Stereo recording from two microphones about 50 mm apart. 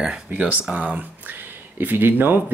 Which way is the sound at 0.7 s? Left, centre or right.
Right.